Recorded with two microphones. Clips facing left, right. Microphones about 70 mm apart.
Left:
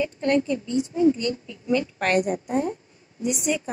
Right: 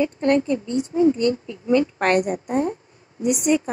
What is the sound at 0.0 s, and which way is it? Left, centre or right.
Speech, right.